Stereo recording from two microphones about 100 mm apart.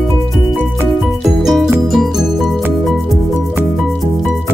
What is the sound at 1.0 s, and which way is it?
Music, 5° right (ahead or behind).